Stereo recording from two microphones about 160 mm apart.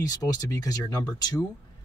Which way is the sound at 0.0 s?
20° left (ahead or behind).